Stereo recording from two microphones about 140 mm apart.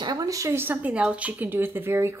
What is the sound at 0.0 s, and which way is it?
A woman's voice, 30° right (ahead or behind).